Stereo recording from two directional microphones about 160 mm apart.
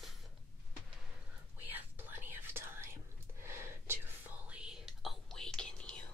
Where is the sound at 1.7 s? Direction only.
10° right (ahead or behind).